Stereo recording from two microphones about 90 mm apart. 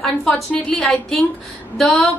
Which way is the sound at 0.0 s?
5° left (ahead or behind).